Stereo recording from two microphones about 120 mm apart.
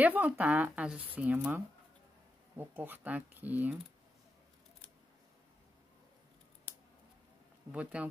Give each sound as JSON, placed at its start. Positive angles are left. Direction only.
{"t": 0.0, "sound": "speech", "side_deg": -15}
{"t": 7.7, "sound": "speech", "side_deg": -10}